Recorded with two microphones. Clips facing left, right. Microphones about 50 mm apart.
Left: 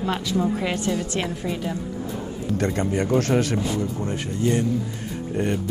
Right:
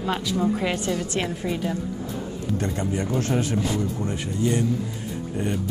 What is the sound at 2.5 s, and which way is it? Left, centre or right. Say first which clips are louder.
Speech: left 4 dB; left.